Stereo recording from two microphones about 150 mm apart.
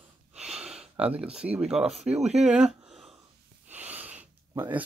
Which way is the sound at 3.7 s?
10° right (ahead or behind).